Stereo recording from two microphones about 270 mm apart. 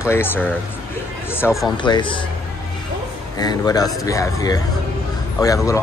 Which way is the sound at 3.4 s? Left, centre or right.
Centre.